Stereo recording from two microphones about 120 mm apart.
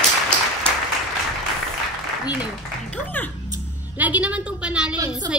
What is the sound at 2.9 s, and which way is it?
Speech, 15° left (ahead or behind).